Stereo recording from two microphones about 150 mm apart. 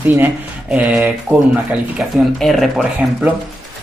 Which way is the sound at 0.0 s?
10° right (ahead or behind).